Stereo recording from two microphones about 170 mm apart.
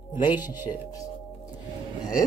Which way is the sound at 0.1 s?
10° right (ahead or behind).